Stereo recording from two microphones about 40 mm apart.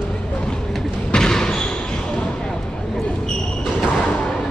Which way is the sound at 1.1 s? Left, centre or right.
Centre.